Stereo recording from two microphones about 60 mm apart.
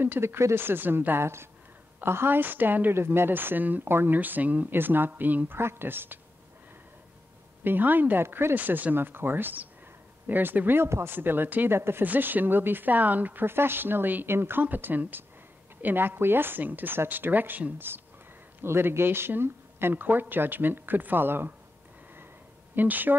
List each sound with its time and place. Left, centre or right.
0.0 s speech: right
5.6 s speech: right
7.6 s speech: right
8.5 s speech: right
18.6 s speech: right
22.8 s speech: right